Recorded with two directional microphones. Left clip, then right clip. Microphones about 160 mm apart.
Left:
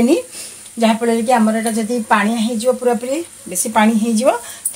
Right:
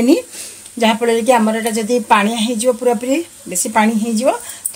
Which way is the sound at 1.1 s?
50° right (ahead or behind).